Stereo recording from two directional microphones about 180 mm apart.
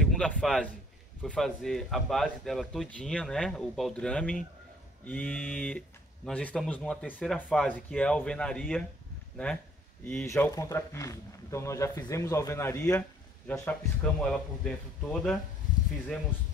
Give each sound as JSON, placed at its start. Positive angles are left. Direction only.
{"t": 0.0, "sound": "a man's voice", "side_deg": 0}
{"t": 10.0, "sound": "speech", "side_deg": 10}